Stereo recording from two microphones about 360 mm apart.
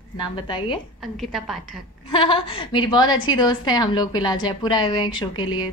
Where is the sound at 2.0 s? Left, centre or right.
Centre.